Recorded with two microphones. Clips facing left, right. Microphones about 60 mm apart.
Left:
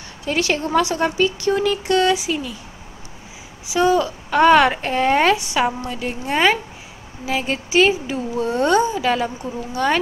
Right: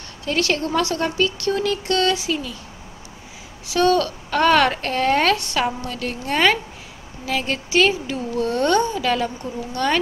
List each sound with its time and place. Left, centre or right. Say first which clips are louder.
0.2 s speech: left 1 dB; centre
3.6 s speech: left 1 dB; centre